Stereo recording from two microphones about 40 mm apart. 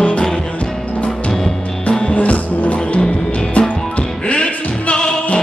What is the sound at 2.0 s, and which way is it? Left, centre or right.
Music, left.